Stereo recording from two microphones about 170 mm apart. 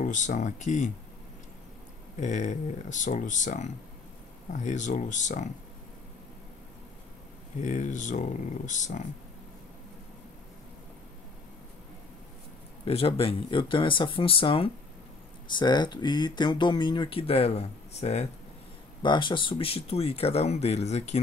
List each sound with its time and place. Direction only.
0.0 s speech: 45° left (ahead or behind)
2.1 s speech: 45° left (ahead or behind)
7.6 s speech: 45° left (ahead or behind)
12.8 s speech: 35° left (ahead or behind)
19.0 s speech: 30° left (ahead or behind)